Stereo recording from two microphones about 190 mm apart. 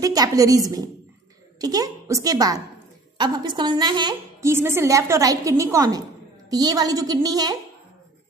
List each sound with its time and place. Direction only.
0.0 s a woman's voice: 20° right (ahead or behind)